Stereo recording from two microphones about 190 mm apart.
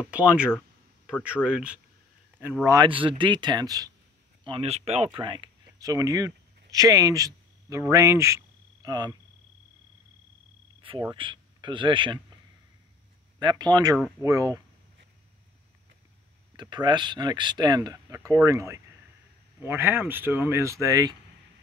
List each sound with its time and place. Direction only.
0.0 s speech: 5° right (ahead or behind)
4.5 s speech: 30° right (ahead or behind)
10.8 s cricket: 25° right (ahead or behind)
11.1 s speech: 25° right (ahead or behind)
13.4 s speech: 25° right (ahead or behind)
16.5 s speech: 25° right (ahead or behind)